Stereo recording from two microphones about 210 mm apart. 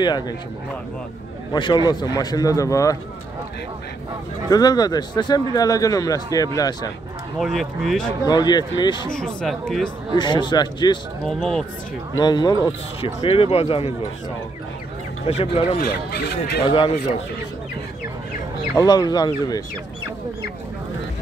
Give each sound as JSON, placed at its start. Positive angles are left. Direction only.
{"t": 1.5, "sound": "a man's voice", "side_deg": 20}
{"t": 4.5, "sound": "a man's voice", "side_deg": 20}
{"t": 7.3, "sound": "speech", "side_deg": 0}
{"t": 8.3, "sound": "speech", "side_deg": 20}
{"t": 9.1, "sound": "speech", "side_deg": 5}
{"t": 10.1, "sound": "speech", "side_deg": 20}
{"t": 11.2, "sound": "speech", "side_deg": 0}
{"t": 12.2, "sound": "speech", "side_deg": 20}
{"t": 15.2, "sound": "speech", "side_deg": 25}
{"t": 15.8, "sound": "speech", "side_deg": 45}
{"t": 16.6, "sound": "speech", "side_deg": 25}
{"t": 18.8, "sound": "speech", "side_deg": 20}